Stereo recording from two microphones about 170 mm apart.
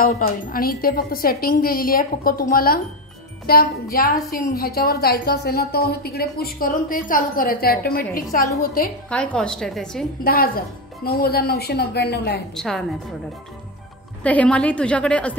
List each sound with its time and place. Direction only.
0.2 s a woman's voice: 60° left (ahead or behind)
9.1 s a woman's voice: 5° left (ahead or behind)
10.2 s a woman's voice: 60° left (ahead or behind)
12.5 s a woman's voice: centre (ahead or behind)
14.2 s a woman's voice: 10° left (ahead or behind)